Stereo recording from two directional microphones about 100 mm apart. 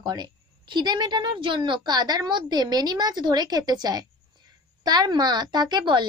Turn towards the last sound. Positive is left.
turn(degrees=-50)  # may be behind; listen again after turning